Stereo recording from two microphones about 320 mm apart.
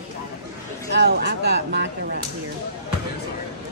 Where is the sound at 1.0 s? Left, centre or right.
Right.